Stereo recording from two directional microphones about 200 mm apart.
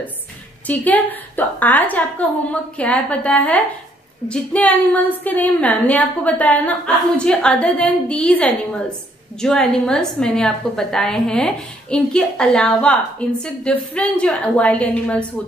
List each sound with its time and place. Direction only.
0.7 s a woman's voice: 10° left (ahead or behind)